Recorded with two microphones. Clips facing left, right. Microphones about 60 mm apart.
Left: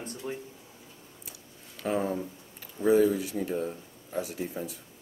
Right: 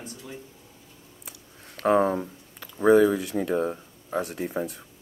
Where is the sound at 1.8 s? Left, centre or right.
Right.